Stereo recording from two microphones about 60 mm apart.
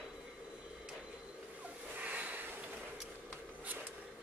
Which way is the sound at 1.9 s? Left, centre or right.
Right.